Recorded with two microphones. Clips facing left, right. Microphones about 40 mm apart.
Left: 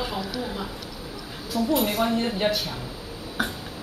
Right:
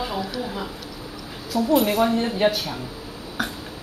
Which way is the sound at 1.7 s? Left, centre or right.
Centre.